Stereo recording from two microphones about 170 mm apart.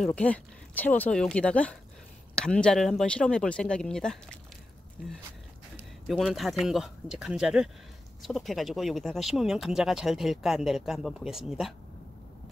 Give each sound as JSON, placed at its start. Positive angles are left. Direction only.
{"t": 0.0, "sound": "speech", "side_deg": 5}
{"t": 6.0, "sound": "speech", "side_deg": 0}